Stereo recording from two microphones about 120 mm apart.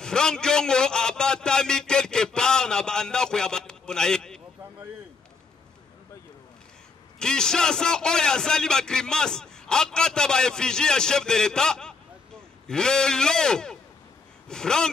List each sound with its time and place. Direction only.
0.0 s a man's voice: 5° left (ahead or behind)
7.2 s a man's voice: 5° left (ahead or behind)